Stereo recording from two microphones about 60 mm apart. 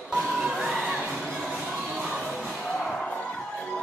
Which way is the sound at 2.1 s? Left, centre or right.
Centre.